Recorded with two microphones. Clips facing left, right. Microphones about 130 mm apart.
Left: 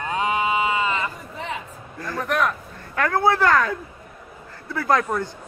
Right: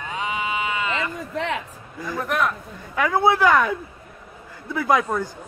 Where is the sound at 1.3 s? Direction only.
85° right.